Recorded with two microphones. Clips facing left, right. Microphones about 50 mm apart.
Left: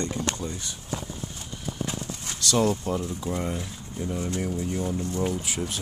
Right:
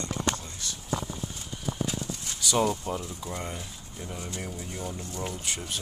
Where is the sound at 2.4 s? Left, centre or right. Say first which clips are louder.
Left 3 dB; centre.